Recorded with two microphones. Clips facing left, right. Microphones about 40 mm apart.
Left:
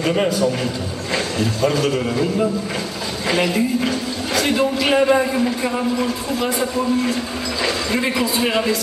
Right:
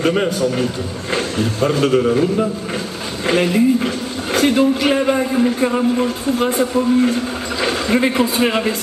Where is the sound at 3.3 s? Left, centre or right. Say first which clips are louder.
Right 4 dB; right.